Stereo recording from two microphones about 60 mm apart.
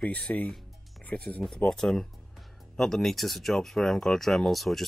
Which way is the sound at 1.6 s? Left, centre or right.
Centre.